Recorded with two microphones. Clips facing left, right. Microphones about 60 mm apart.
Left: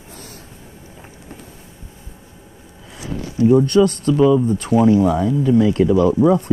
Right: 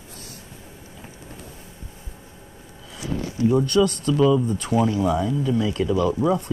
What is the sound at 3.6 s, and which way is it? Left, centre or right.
Speech, left.